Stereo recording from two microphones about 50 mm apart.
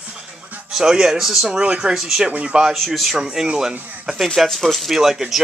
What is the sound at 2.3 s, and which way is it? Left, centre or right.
Speech, right.